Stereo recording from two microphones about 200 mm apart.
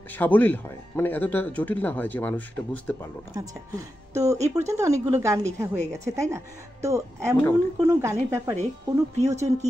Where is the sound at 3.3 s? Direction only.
15° right (ahead or behind).